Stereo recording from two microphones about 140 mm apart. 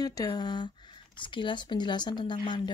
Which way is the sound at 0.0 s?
25° left (ahead or behind).